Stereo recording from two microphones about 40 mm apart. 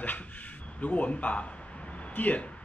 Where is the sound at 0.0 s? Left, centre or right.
Left.